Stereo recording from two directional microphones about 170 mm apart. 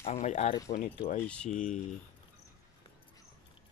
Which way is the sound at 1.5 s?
45° left (ahead or behind).